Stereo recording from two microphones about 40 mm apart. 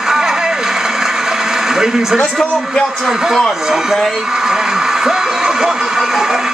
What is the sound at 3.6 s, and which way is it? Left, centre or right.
Speech, centre.